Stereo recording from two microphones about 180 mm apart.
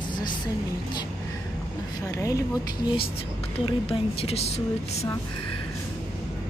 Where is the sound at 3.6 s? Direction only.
35° left (ahead or behind).